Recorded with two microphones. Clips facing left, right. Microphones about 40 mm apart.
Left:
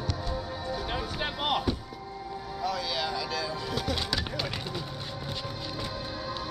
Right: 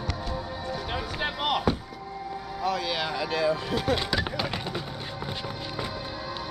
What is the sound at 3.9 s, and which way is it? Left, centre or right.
Music, centre.